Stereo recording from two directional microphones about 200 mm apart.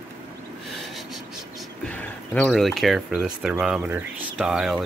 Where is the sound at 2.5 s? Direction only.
Centre (ahead or behind).